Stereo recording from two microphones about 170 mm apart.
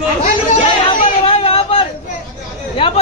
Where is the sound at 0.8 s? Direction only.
35° left (ahead or behind).